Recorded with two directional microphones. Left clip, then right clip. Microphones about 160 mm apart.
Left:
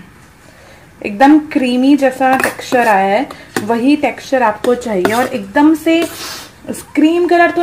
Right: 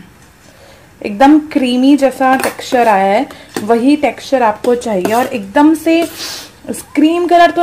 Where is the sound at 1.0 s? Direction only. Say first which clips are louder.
Right 1 dB; 5° right (ahead or behind).